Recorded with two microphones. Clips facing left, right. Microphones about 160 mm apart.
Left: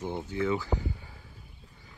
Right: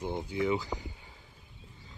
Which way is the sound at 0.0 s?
15° right (ahead or behind).